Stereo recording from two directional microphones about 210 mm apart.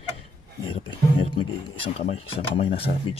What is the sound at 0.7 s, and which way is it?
Speech, 25° left (ahead or behind).